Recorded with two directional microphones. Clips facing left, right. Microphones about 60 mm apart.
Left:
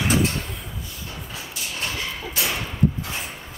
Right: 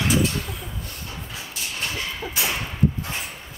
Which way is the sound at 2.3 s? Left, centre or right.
Right.